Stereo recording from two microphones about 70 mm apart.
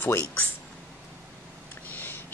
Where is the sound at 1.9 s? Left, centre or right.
Left.